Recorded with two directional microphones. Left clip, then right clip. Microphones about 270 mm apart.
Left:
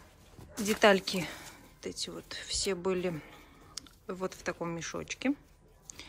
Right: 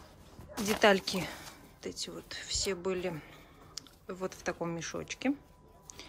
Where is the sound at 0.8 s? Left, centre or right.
Centre.